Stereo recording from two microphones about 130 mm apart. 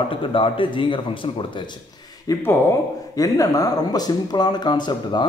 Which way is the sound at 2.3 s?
30° left (ahead or behind).